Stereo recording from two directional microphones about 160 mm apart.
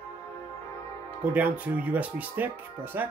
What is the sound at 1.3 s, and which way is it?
Speech, 10° right (ahead or behind).